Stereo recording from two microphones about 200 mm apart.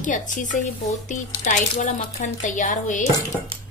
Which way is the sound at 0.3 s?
40° left (ahead or behind).